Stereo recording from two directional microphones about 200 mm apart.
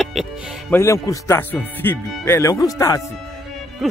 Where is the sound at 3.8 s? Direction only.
Centre (ahead or behind).